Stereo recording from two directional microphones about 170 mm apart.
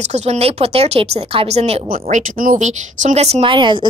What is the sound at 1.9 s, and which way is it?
Speech, 50° right (ahead or behind).